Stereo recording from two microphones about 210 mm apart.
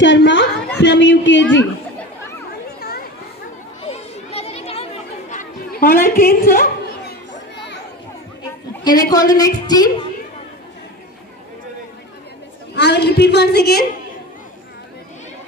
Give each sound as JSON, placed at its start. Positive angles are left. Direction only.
{"t": 0.0, "sound": "a woman's voice", "side_deg": 60}
{"t": 3.8, "sound": "children playing", "side_deg": 30}
{"t": 5.3, "sound": "a sound", "side_deg": 40}
{"t": 8.8, "sound": "a woman's voice", "side_deg": 20}
{"t": 12.7, "sound": "a woman's voice", "side_deg": 55}